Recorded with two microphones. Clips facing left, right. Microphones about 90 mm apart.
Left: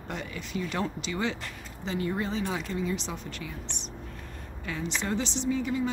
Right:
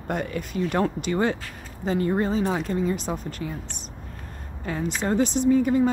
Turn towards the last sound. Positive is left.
turn(degrees=-45)  # may be behind; listen again after turning